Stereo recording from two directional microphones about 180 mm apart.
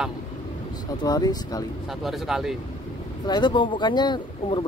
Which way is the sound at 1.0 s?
20° left (ahead or behind).